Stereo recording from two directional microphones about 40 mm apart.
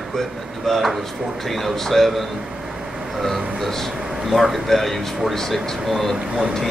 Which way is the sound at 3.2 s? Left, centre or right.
Centre.